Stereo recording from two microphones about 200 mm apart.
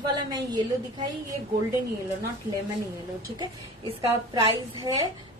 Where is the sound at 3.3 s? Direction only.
20° right (ahead or behind).